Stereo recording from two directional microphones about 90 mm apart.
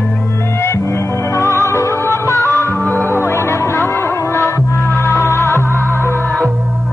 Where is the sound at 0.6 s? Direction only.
30° left (ahead or behind).